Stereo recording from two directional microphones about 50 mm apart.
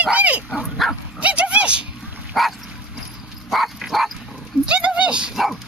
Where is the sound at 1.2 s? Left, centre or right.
Right.